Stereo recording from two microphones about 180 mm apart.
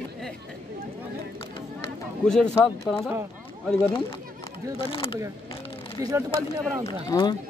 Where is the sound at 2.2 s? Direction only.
5° left (ahead or behind).